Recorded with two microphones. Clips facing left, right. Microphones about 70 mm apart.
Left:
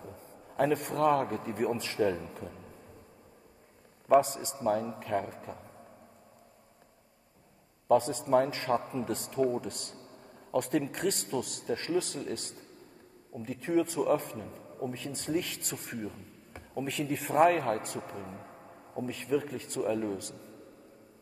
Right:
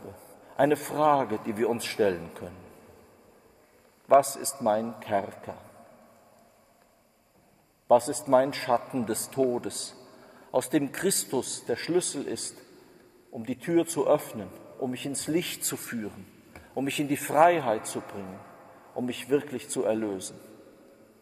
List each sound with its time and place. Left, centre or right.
0.0 s a man's voice: right
4.1 s speech: right
7.9 s a man's voice: right